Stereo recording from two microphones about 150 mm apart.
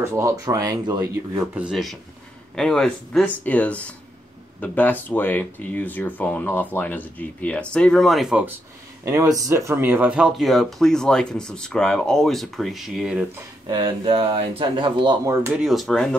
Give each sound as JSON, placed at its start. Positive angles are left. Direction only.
{"t": 0.0, "sound": "speech", "side_deg": -20}
{"t": 1.5, "sound": "speech", "side_deg": -5}
{"t": 9.0, "sound": "speech", "side_deg": -20}
{"t": 13.7, "sound": "speech", "side_deg": -35}
{"t": 15.2, "sound": "speech", "side_deg": -20}
{"t": 15.5, "sound": "speech", "side_deg": 0}